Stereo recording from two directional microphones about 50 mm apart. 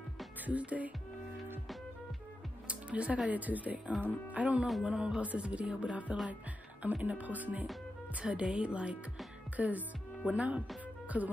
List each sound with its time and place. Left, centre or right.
0.5 s speech: right
2.7 s music: right
3.3 s speech: right
4.3 s music: right
6.8 s speech: right
8.2 s music: right
9.6 s speech: right
10.2 s music: right
11.1 s speech: right